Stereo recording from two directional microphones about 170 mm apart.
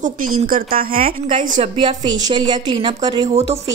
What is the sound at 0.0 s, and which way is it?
A woman's voice, 50° right (ahead or behind).